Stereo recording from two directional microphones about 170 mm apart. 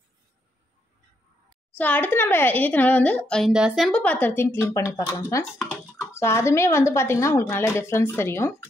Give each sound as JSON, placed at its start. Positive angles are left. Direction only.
{"t": 1.8, "sound": "a woman's voice", "side_deg": 10}